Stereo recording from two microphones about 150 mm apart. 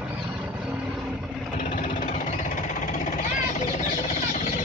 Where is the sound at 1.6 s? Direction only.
60° left (ahead or behind).